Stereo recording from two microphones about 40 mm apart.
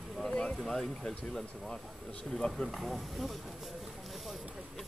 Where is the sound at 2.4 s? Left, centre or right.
Left.